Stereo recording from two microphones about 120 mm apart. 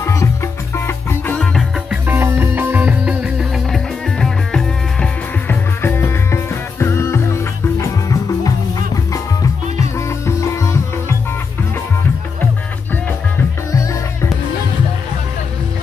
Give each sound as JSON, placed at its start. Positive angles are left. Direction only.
{"t": 0.0, "sound": "music", "side_deg": 25}
{"t": 1.4, "sound": "music", "side_deg": 5}
{"t": 1.9, "sound": "music", "side_deg": -20}
{"t": 5.5, "sound": "music", "side_deg": 20}
{"t": 13.4, "sound": "music", "side_deg": 25}